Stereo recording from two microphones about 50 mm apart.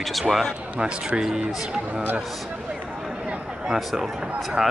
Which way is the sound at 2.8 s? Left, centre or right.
Centre.